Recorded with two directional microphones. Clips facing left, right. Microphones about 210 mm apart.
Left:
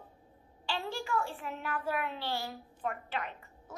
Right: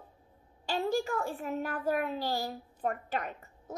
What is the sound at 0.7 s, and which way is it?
A child's voice, 40° right (ahead or behind).